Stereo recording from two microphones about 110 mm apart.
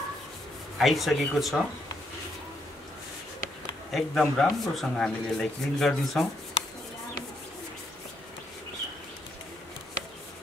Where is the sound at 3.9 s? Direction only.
5° left (ahead or behind).